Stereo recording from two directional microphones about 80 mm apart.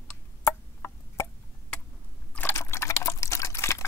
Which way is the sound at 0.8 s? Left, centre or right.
Left.